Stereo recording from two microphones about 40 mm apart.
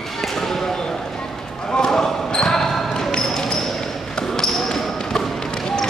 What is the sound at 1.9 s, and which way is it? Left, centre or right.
Basketball bounce, centre.